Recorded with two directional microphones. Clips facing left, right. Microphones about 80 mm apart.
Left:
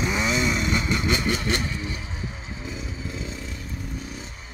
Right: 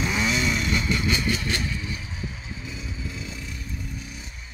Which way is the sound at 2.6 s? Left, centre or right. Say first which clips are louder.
Left 3 dB; left.